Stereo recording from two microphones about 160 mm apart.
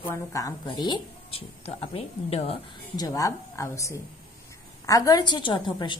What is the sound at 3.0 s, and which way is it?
Speech, 20° left (ahead or behind).